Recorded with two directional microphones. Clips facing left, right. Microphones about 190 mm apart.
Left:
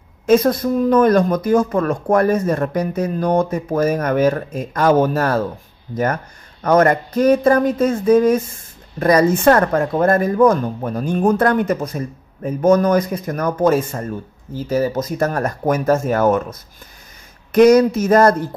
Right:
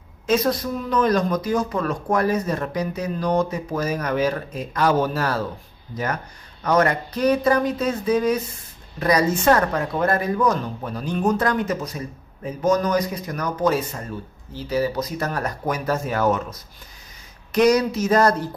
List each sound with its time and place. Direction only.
0.3 s speech: 50° left (ahead or behind)
6.6 s speech: 50° left (ahead or behind)